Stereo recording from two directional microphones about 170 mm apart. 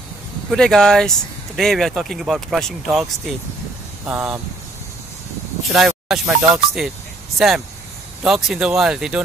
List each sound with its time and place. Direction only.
0.5 s speech: 5° left (ahead or behind)
5.7 s speech: centre (ahead or behind)